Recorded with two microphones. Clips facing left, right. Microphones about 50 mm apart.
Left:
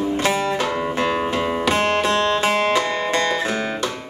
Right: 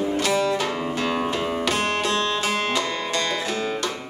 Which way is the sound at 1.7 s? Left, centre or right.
Left.